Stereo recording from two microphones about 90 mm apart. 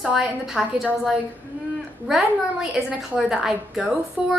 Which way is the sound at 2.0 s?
5° right (ahead or behind).